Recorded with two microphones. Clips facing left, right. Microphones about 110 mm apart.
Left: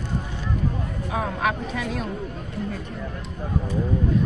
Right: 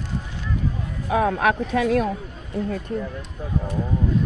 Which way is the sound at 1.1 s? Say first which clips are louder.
Right 6 dB; 60° right (ahead or behind).